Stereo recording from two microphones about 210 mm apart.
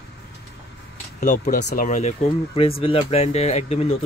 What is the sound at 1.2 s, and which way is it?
Speech, 35° left (ahead or behind).